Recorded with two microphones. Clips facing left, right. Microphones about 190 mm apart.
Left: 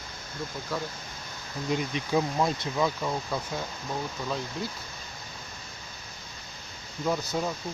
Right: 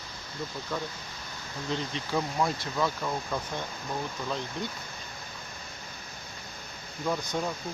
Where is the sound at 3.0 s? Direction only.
5° left (ahead or behind).